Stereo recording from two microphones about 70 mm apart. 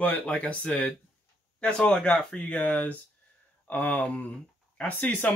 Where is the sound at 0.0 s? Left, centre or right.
Centre.